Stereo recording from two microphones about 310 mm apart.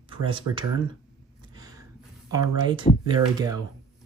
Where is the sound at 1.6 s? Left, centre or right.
Centre.